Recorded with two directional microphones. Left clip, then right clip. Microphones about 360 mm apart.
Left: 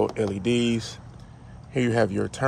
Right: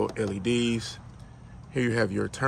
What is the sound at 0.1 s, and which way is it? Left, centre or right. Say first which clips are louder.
Speech: left 3 dB; centre.